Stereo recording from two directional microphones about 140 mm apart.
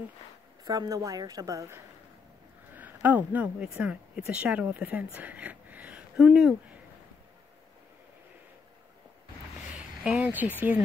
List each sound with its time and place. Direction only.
0.7 s a woman's voice: 25° right (ahead or behind)
2.7 s speech: 10° right (ahead or behind)
9.8 s a sound: 10° right (ahead or behind)